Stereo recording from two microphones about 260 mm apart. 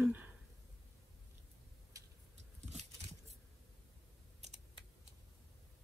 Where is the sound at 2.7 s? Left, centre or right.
Right.